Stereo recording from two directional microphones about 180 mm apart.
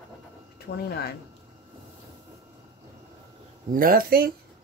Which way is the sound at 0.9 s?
65° left (ahead or behind).